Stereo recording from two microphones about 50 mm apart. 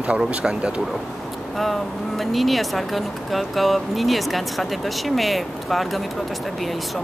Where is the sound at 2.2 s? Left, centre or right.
Centre.